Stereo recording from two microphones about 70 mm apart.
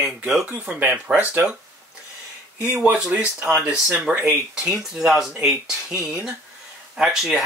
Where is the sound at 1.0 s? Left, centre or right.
Right.